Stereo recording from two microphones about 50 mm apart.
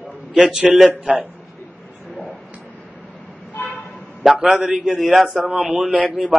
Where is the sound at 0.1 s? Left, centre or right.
Right.